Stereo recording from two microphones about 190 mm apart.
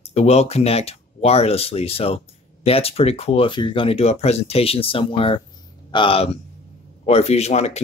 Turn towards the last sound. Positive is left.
turn(degrees=35)  # may be behind; listen again after turning